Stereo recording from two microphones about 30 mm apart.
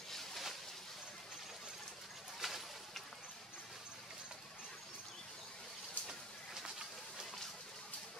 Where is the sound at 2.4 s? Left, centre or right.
Centre.